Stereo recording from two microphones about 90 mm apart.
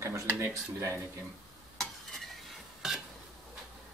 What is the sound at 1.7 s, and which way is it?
Stir, centre (ahead or behind).